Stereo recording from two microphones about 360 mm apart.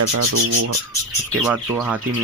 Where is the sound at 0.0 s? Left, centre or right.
Right.